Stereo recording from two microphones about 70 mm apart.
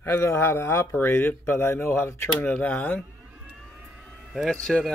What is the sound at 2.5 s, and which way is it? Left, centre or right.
Speech, centre.